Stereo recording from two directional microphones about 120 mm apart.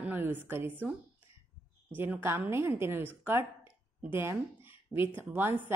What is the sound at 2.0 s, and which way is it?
A woman's voice, 15° right (ahead or behind).